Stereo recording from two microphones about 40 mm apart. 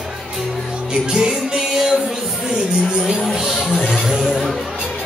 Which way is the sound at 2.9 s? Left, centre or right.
Centre.